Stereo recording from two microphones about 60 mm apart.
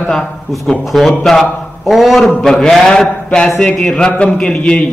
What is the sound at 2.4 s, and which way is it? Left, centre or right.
A man's voice, centre.